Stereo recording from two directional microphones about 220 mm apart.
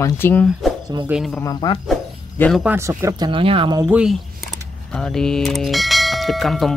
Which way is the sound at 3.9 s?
Centre (ahead or behind).